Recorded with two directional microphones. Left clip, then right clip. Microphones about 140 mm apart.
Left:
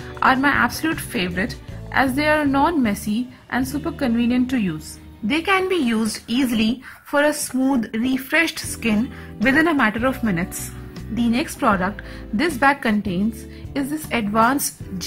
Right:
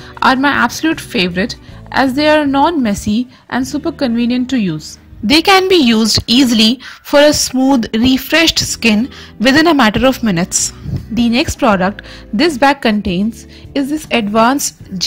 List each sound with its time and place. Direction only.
0.2 s a woman's voice: 35° right (ahead or behind)
5.3 s a woman's voice: 50° right (ahead or behind)
5.9 s a woman's voice: 40° right (ahead or behind)
8.8 s a woman's voice: 50° right (ahead or behind); by 15.0 s 35° right (ahead or behind)